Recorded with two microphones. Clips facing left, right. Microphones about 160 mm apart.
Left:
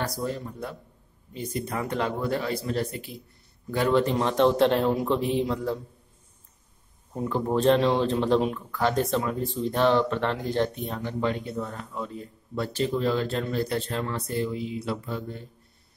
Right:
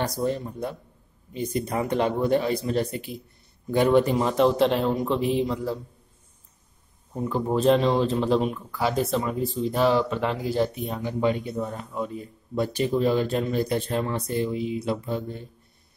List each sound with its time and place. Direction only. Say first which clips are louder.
0.0 s a man's voice: right 4 dB; 20° right (ahead or behind); by 5.8 s centre (ahead or behind)
7.2 s speech: right 1 dB; centre (ahead or behind); by 15.4 s 20° right (ahead or behind)